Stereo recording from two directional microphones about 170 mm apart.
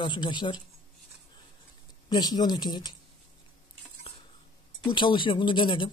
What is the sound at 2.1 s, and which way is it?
Speech, 25° left (ahead or behind).